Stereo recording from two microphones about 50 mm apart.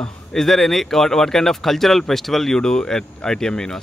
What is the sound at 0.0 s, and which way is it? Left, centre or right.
Speech, centre.